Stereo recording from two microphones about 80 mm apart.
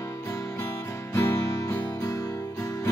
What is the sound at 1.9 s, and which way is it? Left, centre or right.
Music, left.